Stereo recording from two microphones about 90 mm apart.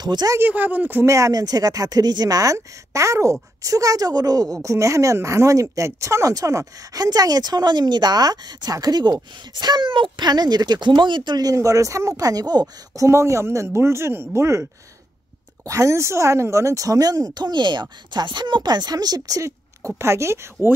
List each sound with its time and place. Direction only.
0.0 s speech: 50° right (ahead or behind)
0.4 s speech: 20° right (ahead or behind)
1.0 s speech: 35° right (ahead or behind)
20.0 s speech: 30° right (ahead or behind)